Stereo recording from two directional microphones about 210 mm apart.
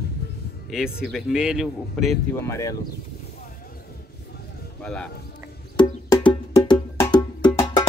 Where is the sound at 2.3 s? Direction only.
15° left (ahead or behind).